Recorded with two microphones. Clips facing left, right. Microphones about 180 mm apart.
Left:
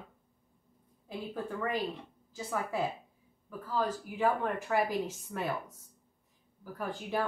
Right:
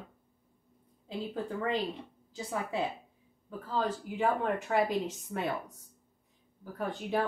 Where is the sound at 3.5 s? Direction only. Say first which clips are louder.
Even; 25° right (ahead or behind).